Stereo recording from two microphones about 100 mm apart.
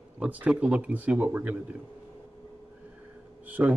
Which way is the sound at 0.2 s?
10° right (ahead or behind).